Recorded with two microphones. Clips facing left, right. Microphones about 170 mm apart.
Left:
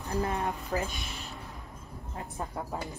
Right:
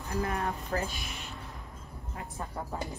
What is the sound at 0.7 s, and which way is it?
Speech, 10° left (ahead or behind).